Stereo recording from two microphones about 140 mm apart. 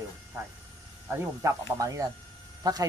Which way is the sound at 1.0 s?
20° right (ahead or behind).